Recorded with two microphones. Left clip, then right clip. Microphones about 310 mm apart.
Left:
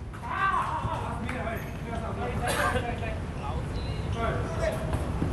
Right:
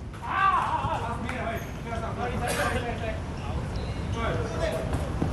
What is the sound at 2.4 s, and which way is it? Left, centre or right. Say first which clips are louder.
Vehicle: left 1 dB; centre.